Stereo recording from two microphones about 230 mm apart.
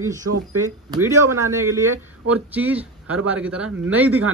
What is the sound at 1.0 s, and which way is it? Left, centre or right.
A man's voice, centre.